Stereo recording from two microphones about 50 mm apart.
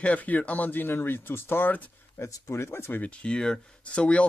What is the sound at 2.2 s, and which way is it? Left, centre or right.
Speech, left.